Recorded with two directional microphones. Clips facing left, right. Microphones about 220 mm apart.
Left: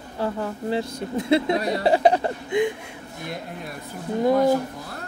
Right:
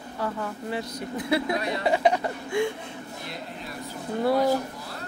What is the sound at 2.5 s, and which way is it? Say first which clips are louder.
Speech: left 3 dB; 20° left (ahead or behind).